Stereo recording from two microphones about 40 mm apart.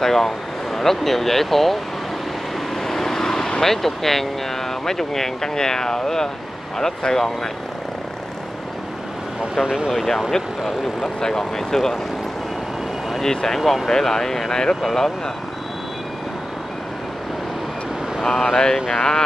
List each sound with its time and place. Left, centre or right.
0.0 s speech: centre
2.8 s vehicle: centre
4.8 s speech: centre
10.3 s speech: centre
13.2 s speech: centre
14.8 s speech: centre
18.2 s speech: centre